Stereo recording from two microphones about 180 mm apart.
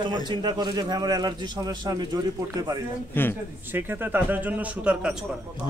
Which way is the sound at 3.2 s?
10° left (ahead or behind).